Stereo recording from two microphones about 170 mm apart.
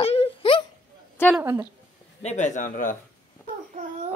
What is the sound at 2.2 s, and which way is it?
Speech, 45° left (ahead or behind).